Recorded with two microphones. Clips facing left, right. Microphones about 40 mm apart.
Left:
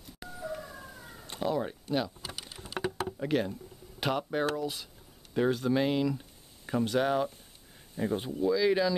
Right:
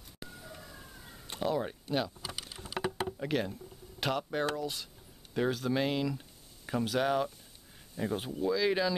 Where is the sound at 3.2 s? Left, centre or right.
Centre.